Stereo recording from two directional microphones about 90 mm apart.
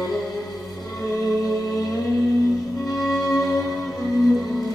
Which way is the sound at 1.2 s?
Centre (ahead or behind).